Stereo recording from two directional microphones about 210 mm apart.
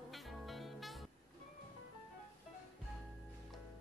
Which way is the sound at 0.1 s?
Centre (ahead or behind).